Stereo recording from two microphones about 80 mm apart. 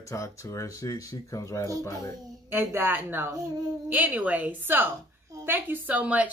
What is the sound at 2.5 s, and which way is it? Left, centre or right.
A woman's voice, right.